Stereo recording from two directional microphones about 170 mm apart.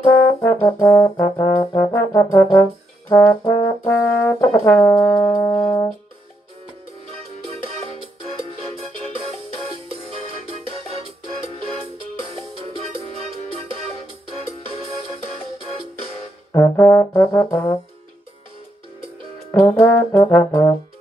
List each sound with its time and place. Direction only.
0.4 s brass instrument: 15° left (ahead or behind)
8.5 s music: 35° right (ahead or behind)
10.7 s music: 35° right (ahead or behind)
12.2 s music: 35° right (ahead or behind)
16.5 s brass instrument: 10° left (ahead or behind)
19.5 s brass instrument: 10° left (ahead or behind)